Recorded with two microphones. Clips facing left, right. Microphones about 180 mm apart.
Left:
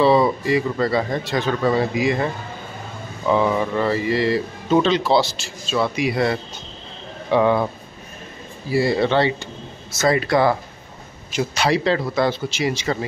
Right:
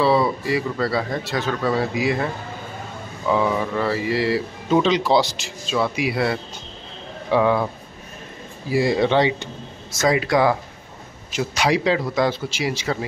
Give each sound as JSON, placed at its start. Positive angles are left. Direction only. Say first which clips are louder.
{"t": 0.5, "sound": "a man's voice", "louder": "left 3 dB", "side_deg": -5}
{"t": 3.3, "sound": "a man's voice", "louder": "left 2 dB", "side_deg": 0}
{"t": 8.6, "sound": "speech", "louder": "even", "side_deg": -15}
{"t": 11.5, "sound": "speech", "louder": "even", "side_deg": -10}